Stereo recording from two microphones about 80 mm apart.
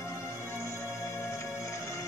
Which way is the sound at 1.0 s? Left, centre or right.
Left.